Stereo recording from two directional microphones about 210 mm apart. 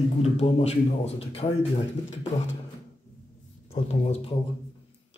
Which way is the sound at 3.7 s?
30° left (ahead or behind).